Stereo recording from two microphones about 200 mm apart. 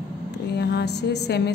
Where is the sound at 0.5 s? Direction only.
55° left (ahead or behind).